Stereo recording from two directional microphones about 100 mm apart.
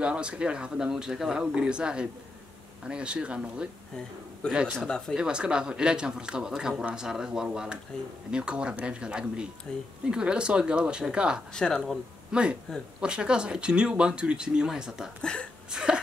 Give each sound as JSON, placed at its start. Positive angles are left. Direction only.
{"t": 0.0, "sound": "speech", "side_deg": -10}
{"t": 4.7, "sound": "speech", "side_deg": 5}
{"t": 5.1, "sound": "speech", "side_deg": -10}
{"t": 11.5, "sound": "speech", "side_deg": 5}
{"t": 12.3, "sound": "speech", "side_deg": -10}